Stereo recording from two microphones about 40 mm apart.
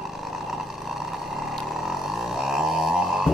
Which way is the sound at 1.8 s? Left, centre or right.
Centre.